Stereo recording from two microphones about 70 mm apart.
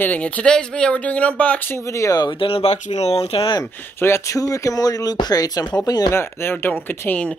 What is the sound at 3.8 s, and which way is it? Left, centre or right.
Speech, left.